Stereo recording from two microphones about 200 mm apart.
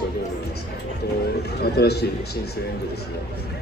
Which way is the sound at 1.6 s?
55° left (ahead or behind).